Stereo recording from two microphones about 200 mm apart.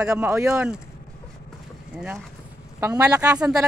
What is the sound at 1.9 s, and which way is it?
Speech, 5° right (ahead or behind).